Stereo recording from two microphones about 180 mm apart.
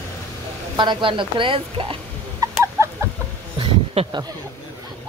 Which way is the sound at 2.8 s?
15° right (ahead or behind).